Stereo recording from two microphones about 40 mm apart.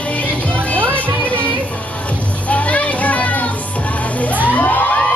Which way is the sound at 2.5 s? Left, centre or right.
Left.